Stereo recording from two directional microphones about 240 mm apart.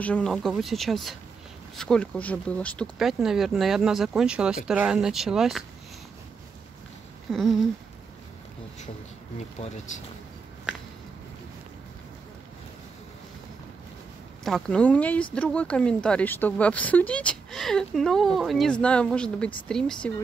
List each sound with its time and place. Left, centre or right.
0.0 s speech: centre
7.2 s a sound: centre
9.9 s speech: left
14.4 s speech: centre